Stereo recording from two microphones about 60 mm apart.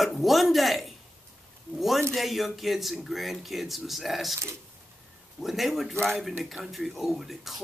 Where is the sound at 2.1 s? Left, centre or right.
Centre.